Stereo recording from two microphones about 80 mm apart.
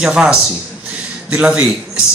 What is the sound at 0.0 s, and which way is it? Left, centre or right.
A man's voice, centre.